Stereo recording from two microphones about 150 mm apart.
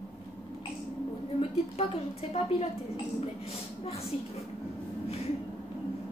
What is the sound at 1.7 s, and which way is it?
Speech, 40° left (ahead or behind).